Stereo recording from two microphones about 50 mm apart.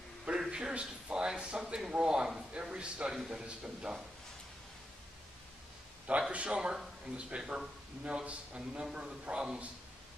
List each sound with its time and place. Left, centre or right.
0.5 s a man's voice: centre
6.0 s a man's voice: right